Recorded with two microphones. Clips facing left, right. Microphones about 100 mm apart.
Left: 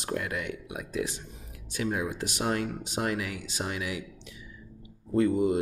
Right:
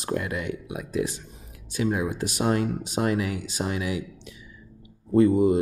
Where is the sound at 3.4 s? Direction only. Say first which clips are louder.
Right 5 dB; 45° right (ahead or behind).